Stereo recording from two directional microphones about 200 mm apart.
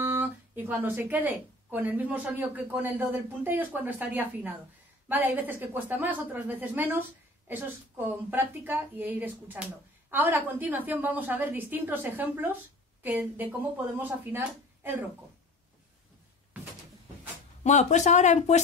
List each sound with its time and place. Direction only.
0.0 s a woman's voice: 10° right (ahead or behind)
17.6 s speech: 35° left (ahead or behind)